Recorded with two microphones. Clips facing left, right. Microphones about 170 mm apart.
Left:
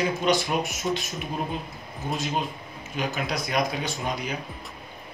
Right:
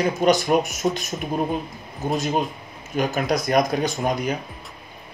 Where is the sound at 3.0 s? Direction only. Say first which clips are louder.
Right 7 dB; 45° right (ahead or behind).